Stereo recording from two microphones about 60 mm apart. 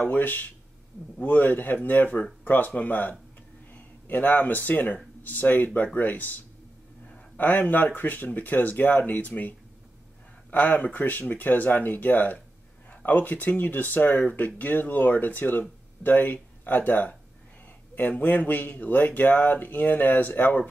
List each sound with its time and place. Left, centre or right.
0.0 s speech: left